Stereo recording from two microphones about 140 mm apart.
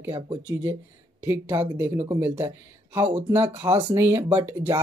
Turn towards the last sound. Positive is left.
turn(degrees=-15)  # may be behind; listen again after turning